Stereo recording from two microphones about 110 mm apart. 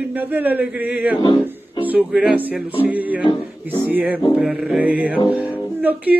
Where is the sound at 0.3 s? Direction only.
15° right (ahead or behind).